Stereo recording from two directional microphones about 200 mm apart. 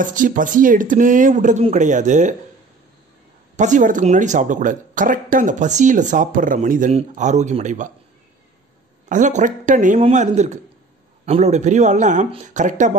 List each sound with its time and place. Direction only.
0.0 s speech: 40° right (ahead or behind)
3.5 s speech: 40° right (ahead or behind)
9.1 s speech: 40° right (ahead or behind)